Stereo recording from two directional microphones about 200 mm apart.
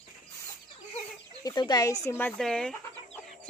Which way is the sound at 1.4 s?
20° left (ahead or behind).